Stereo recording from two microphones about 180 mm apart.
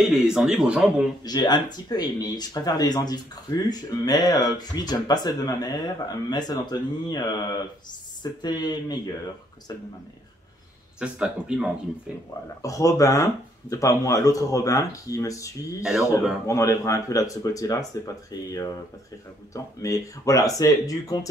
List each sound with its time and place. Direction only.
0.0 s speech: 5° right (ahead or behind)
1.2 s speech: 25° left (ahead or behind)
11.0 s speech: 5° right (ahead or behind)
12.6 s speech: 20° left (ahead or behind)